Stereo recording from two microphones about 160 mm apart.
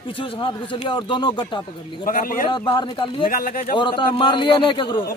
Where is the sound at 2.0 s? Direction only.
60° left (ahead or behind).